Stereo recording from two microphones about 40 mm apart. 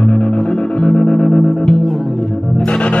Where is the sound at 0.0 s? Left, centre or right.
Left.